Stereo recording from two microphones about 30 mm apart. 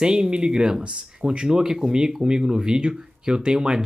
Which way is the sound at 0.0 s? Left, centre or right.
Right.